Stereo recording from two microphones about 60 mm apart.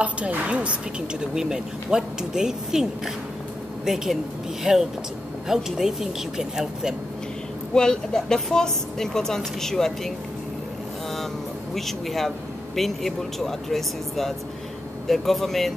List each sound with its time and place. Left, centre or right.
0.0 s a woman's voice: right; by 4.2 s centre
5.5 s speech: centre
7.7 s speech: centre
11.7 s speech: centre